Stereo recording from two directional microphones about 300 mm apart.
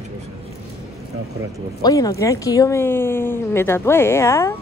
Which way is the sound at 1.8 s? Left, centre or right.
Centre.